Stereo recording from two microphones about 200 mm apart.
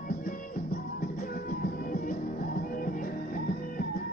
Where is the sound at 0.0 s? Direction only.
45° left (ahead or behind).